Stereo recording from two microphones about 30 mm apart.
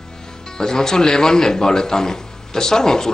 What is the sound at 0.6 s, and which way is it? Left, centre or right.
A man's voice, centre.